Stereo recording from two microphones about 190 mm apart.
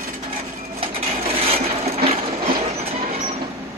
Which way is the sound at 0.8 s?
30° right (ahead or behind).